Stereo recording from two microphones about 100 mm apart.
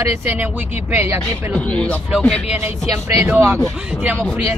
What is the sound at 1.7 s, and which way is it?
Speech, 10° left (ahead or behind).